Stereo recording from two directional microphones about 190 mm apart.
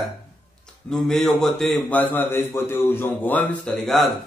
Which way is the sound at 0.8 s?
5° left (ahead or behind).